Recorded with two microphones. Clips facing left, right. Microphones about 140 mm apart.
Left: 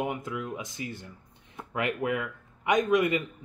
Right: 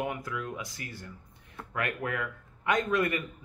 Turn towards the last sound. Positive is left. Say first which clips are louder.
# left 4 dB
turn(degrees=15)  # may be behind; listen again after turning